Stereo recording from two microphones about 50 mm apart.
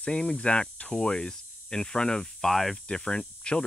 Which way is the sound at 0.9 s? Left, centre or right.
Centre.